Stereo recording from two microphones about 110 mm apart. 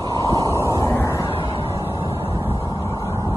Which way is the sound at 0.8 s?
25° left (ahead or behind).